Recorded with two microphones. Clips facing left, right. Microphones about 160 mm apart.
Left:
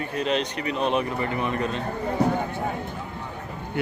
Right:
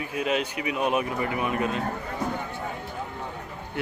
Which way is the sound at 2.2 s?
65° left (ahead or behind).